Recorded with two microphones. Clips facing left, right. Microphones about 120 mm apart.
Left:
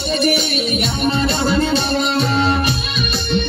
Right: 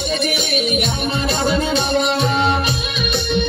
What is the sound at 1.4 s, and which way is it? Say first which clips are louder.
Music: left 1 dB; 30° left (ahead or behind).